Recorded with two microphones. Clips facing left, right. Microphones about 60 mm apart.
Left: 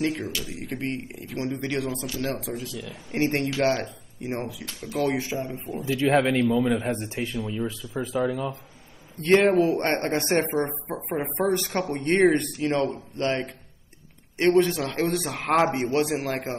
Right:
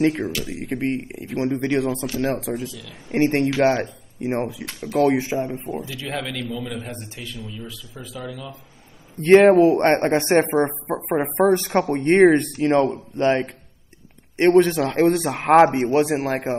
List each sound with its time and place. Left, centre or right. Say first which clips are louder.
0.0 s a man's voice: right 7 dB; right
4.6 s speech: right 5 dB; right
4.9 s speech: right 7 dB; right
5.9 s speech: left 8 dB; left
9.2 s a man's voice: right 7 dB; right